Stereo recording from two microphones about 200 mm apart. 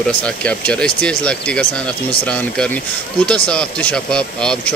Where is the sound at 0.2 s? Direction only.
5° left (ahead or behind).